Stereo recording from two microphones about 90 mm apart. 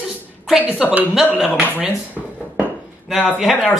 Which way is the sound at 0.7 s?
15° right (ahead or behind).